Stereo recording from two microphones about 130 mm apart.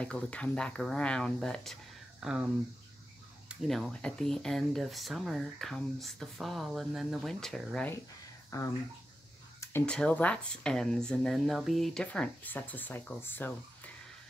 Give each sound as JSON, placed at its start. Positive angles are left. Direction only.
{"t": 0.0, "sound": "speech", "side_deg": 10}
{"t": 3.6, "sound": "speech", "side_deg": 0}
{"t": 9.6, "sound": "a sound", "side_deg": 20}
{"t": 9.8, "sound": "speech", "side_deg": 10}